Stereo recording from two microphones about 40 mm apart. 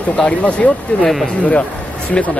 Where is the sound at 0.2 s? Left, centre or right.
Left.